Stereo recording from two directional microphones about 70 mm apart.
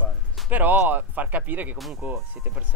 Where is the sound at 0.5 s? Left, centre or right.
Right.